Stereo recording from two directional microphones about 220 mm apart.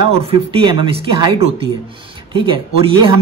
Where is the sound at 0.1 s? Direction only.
25° right (ahead or behind).